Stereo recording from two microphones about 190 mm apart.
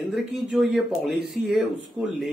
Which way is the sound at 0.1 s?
Centre (ahead or behind).